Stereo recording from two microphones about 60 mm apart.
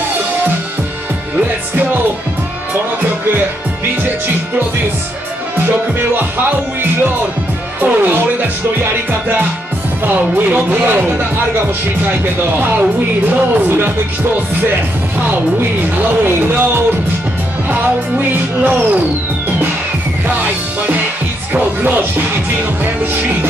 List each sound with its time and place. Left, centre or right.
5.6 s music: right
7.8 s music: right
10.0 s music: right
12.5 s music: right
16.0 s music: right
20.2 s music: right